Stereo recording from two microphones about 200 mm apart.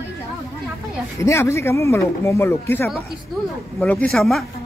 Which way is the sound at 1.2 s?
15° left (ahead or behind).